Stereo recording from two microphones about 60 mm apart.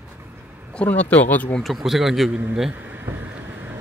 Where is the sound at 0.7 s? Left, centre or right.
Left.